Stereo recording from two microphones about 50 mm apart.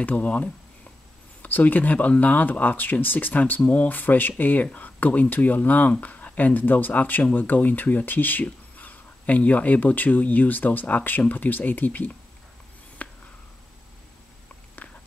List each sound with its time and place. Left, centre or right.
0.0 s speech: left
13.0 s a sound: left
14.8 s walk: left